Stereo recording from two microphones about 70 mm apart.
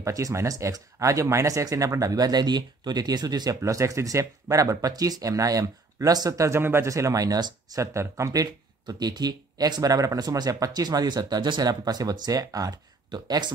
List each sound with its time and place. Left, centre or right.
0.0 s speech: right
6.4 s speech: right
6.9 s speech: right
7.8 s speech: right